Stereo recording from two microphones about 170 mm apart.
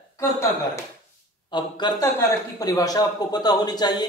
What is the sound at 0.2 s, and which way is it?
Speech, 15° left (ahead or behind).